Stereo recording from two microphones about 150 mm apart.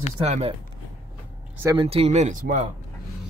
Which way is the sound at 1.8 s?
40° right (ahead or behind).